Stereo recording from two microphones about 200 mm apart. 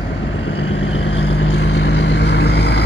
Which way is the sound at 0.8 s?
80° left.